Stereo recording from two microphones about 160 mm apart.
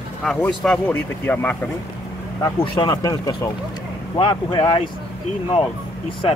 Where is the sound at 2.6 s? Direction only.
30° left (ahead or behind).